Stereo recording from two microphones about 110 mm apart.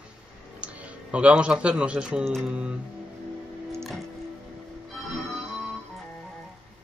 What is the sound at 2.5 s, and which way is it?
Speech, 10° right (ahead or behind).